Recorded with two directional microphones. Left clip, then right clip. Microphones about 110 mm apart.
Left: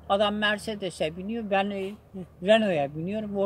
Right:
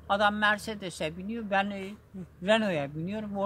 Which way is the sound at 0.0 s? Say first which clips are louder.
Left 1 dB; 35° right (ahead or behind).